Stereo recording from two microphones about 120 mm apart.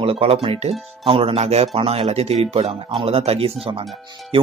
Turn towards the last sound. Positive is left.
turn(degrees=-50)  # may be behind; listen again after turning